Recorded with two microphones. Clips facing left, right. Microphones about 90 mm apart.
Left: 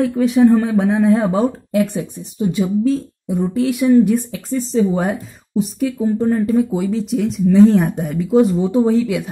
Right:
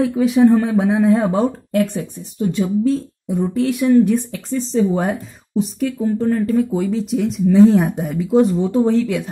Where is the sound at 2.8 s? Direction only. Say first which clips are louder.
Left 1 dB; centre (ahead or behind).